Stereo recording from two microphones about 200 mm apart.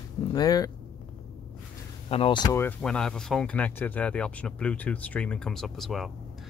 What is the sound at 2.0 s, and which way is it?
Speech, 30° left (ahead or behind).